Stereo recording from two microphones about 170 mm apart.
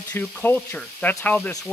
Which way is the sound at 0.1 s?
10° left (ahead or behind).